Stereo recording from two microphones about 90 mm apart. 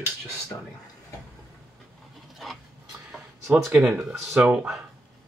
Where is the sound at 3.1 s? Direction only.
5° right (ahead or behind).